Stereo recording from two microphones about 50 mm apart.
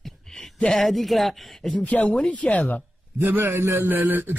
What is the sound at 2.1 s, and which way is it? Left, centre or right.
Speech, left.